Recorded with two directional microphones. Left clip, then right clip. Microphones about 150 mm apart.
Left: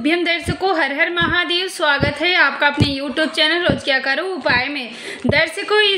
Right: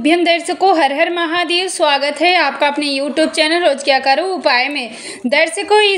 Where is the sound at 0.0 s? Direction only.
15° right (ahead or behind).